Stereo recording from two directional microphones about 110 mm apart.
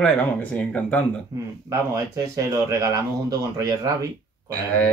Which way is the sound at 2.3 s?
35° right (ahead or behind).